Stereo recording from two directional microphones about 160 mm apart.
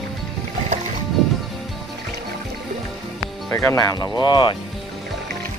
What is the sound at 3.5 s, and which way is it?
Speech, 15° left (ahead or behind).